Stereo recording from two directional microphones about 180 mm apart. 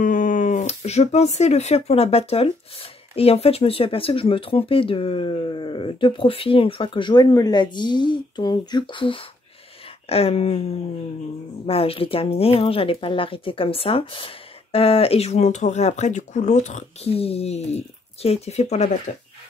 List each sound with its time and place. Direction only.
0.0 s speech: 45° left (ahead or behind)